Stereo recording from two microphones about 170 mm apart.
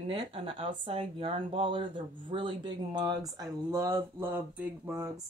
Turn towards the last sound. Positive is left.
turn(degrees=-15)  # may be behind; listen again after turning